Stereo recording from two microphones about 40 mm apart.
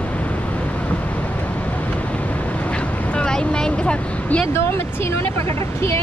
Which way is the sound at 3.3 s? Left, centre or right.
Centre.